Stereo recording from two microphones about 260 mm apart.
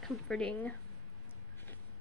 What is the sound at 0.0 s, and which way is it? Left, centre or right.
Speech, centre.